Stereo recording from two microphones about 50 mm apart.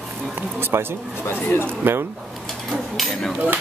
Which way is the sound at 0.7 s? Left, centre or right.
Right.